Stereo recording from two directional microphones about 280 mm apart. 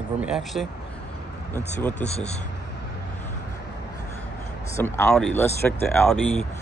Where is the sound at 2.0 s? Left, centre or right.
Left.